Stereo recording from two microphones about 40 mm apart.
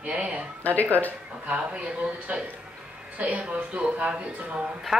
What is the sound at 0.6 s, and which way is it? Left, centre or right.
Speech, left.